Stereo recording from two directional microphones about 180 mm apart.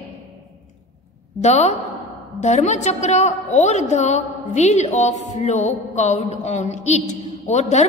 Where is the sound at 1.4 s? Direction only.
40° left (ahead or behind).